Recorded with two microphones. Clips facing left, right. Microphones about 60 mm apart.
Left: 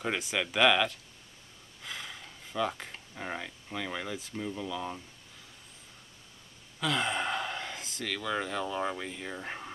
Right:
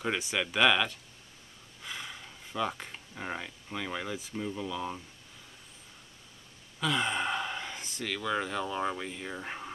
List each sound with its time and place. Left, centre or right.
0.0 s speech: centre
6.8 s speech: centre